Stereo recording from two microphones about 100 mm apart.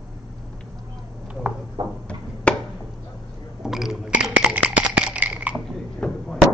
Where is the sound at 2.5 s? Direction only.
10° left (ahead or behind).